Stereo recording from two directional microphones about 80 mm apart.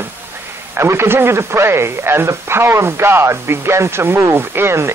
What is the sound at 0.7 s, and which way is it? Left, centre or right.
A man's voice, right.